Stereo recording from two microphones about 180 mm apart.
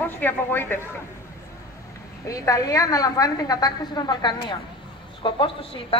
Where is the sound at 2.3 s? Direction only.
20° left (ahead or behind).